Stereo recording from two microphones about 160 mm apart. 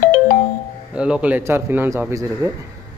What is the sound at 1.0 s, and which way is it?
Speech, 5° right (ahead or behind).